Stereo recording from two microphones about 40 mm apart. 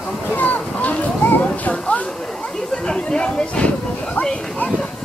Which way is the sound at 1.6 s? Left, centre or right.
Left.